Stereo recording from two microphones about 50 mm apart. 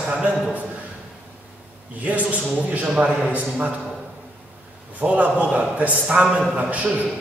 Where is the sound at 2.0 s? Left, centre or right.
Right.